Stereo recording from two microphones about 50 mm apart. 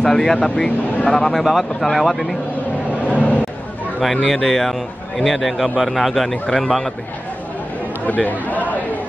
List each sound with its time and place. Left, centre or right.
0.0 s speech: centre
0.7 s speech: left
1.1 s speech: centre
1.4 s a man's voice: centre
3.0 s a sound: left
4.3 s a man's voice: centre
6.3 s speech: centre
8.0 s speech: left